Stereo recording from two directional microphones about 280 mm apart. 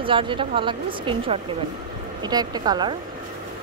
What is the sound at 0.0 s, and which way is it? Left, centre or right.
Speech, centre.